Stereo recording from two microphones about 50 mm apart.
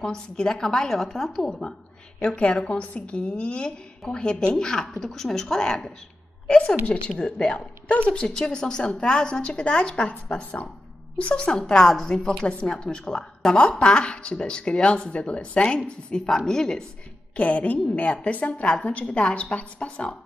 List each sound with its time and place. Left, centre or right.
0.0 s a woman's voice: centre
2.2 s a woman's voice: left
11.5 s a woman's voice: centre
17.4 s a woman's voice: left